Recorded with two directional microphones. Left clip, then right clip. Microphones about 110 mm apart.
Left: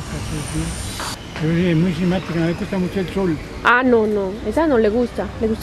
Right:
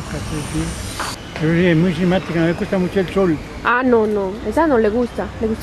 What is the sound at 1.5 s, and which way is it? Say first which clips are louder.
A woman's voice: right 4 dB; 20° right (ahead or behind).